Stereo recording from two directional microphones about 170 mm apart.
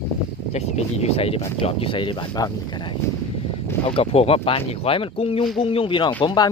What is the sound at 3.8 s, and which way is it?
Speech, 35° left (ahead or behind).